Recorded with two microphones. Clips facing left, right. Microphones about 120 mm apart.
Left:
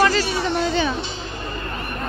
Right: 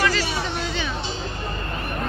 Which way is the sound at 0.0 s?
40° left (ahead or behind).